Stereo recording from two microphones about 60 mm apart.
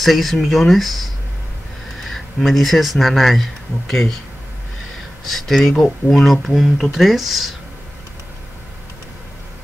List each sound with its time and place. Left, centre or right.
0.0 s speech: centre
5.2 s speech: centre